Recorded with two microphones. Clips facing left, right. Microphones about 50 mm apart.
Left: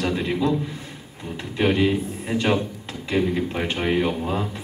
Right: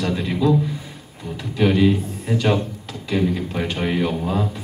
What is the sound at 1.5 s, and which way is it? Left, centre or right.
Speech, centre.